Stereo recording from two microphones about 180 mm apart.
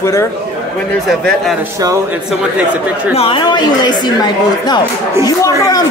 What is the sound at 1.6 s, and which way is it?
Speech, 15° right (ahead or behind).